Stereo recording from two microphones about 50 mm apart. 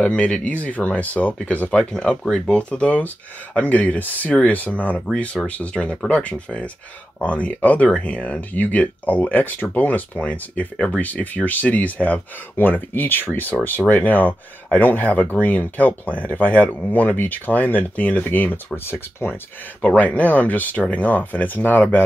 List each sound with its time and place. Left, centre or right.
0.0 s speech: left
5.1 s speech: left
12.5 s speech: left
18.9 s speech: left
20.0 s speech: left